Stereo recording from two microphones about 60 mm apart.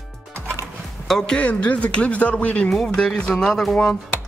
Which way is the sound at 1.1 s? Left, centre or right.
Centre.